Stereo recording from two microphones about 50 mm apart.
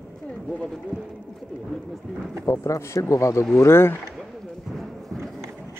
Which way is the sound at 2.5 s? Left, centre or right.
Left.